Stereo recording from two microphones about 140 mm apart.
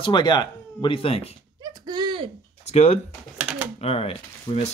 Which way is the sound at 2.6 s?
50° left (ahead or behind).